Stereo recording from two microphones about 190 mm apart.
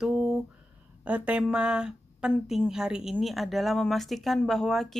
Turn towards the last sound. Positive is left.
turn(degrees=0)  # may be behind; listen again after turning